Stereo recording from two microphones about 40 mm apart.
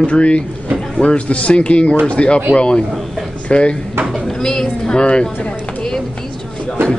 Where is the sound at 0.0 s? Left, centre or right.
Left.